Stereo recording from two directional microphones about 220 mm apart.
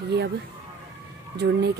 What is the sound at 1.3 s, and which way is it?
Speech, 50° right (ahead or behind).